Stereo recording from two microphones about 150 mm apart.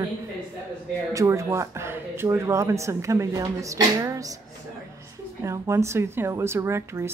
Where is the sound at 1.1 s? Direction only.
20° right (ahead or behind).